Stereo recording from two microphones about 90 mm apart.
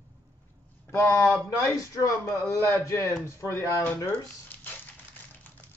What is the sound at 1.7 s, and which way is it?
Speech, 40° left (ahead or behind).